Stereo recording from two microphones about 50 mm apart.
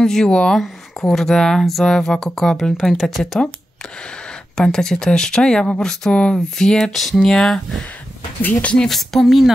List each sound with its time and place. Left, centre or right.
0.0 s speech: centre
4.6 s speech: centre
6.1 s speech: left
6.6 s speech: centre
8.4 s speech: left
8.8 s speech: centre